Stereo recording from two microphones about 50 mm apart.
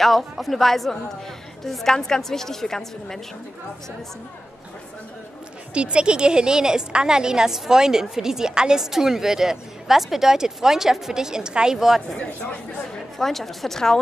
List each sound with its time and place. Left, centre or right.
0.0 s a woman's voice: centre
5.8 s a woman's voice: centre
12.2 s speech: left
13.2 s speech: centre